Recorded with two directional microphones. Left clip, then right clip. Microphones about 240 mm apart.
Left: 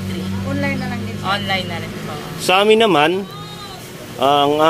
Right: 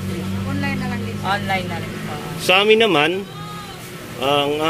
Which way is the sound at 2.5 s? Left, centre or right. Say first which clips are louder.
Left 1 dB; centre.